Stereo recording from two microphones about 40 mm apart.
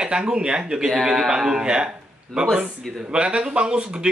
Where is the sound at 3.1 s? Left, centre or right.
Right.